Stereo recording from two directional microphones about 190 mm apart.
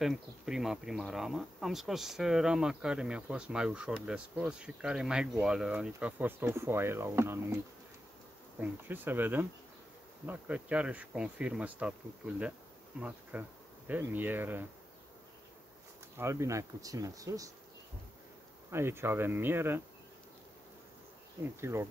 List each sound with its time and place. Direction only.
0.0 s speech: centre (ahead or behind)
8.5 s speech: 10° right (ahead or behind)
13.0 s insect: 10° right (ahead or behind)
16.2 s speech: 15° right (ahead or behind)
18.7 s speech: 10° right (ahead or behind)
21.5 s speech: 15° right (ahead or behind)